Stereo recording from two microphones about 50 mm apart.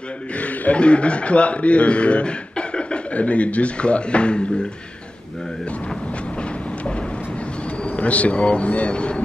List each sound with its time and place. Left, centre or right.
0.4 s a man's voice: left
8.0 s a man's voice: left